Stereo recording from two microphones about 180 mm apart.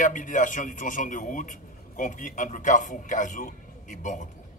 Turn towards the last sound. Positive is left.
turn(degrees=45)  # may be behind; listen again after turning